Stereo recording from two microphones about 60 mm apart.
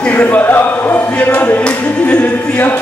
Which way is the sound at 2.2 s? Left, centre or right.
Left.